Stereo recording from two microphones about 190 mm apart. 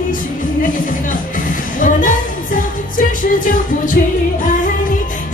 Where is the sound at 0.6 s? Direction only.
45° left (ahead or behind).